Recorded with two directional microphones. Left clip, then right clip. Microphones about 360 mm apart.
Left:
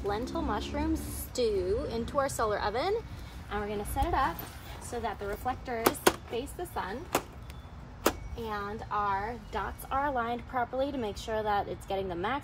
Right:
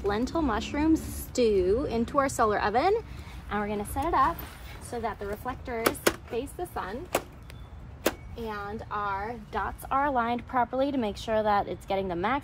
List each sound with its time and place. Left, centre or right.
0.1 s a woman's voice: right
0.9 s speech: centre
1.3 s a woman's voice: right
3.4 s speech: centre